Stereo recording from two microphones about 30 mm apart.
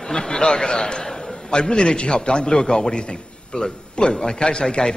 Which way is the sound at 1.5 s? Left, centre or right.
Left.